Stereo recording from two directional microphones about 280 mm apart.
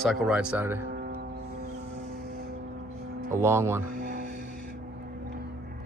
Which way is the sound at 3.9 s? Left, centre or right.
Right.